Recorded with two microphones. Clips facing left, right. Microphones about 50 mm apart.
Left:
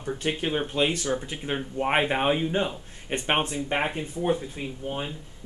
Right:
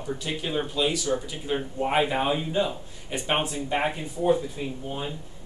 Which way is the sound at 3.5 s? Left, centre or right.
Left.